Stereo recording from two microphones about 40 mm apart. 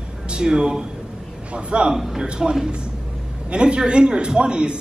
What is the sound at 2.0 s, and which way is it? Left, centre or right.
Speech, centre.